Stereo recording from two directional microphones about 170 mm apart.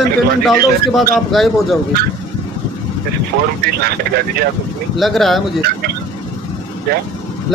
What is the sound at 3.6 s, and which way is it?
Speech, 65° right (ahead or behind).